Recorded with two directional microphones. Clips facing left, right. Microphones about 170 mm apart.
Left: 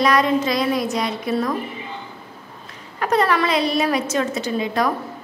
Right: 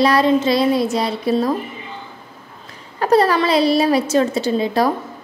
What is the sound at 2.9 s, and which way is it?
A woman's voice, 30° right (ahead or behind).